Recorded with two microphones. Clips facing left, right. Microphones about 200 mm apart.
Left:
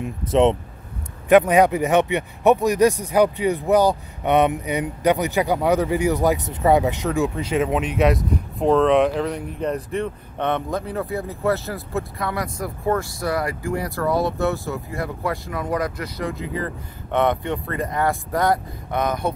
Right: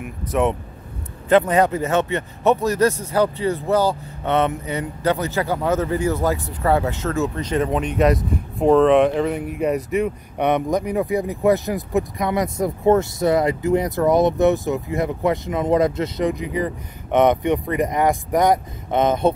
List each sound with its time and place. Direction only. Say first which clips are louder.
0.0 s speech: left 3 dB; 25° left (ahead or behind)
1.3 s speech: left 2 dB; 10° left (ahead or behind); by 19.3 s 25° right (ahead or behind)